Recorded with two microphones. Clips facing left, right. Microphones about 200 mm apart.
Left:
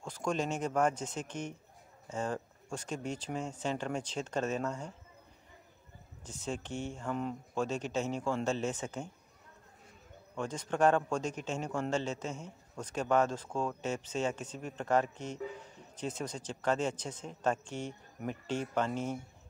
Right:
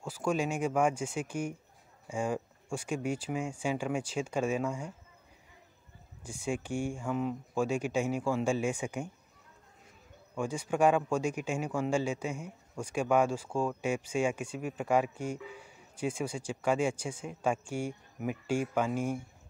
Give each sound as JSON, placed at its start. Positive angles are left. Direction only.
{"t": 0.0, "sound": "speech", "side_deg": -5}
{"t": 6.2, "sound": "speech", "side_deg": -10}
{"t": 10.3, "sound": "speech", "side_deg": -10}